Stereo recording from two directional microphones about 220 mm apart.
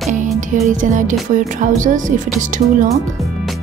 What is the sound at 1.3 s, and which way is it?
A woman's voice, 35° right (ahead or behind).